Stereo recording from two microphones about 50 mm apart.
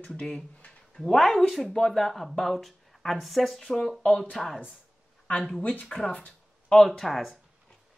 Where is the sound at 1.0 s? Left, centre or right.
Centre.